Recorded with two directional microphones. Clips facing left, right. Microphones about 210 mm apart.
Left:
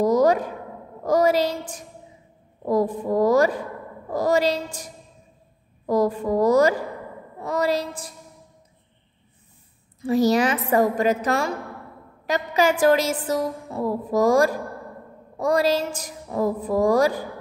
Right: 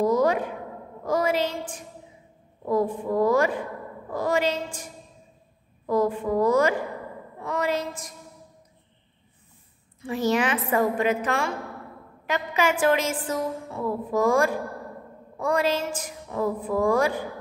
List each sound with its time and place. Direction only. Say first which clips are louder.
0.0 s a sound: left 3 dB; 40° left (ahead or behind)
1.0 s a woman's voice: left 5 dB; 40° left (ahead or behind)
10.0 s a woman's voice: left 5 dB; 40° left (ahead or behind)